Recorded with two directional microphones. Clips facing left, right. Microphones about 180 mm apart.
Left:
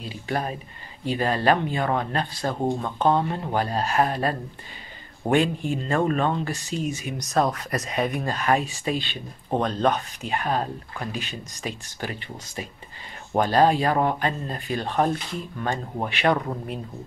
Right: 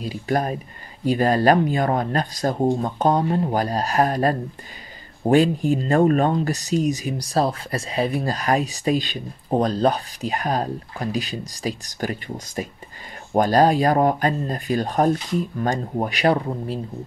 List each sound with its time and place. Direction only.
0.0 s speech: 40° right (ahead or behind)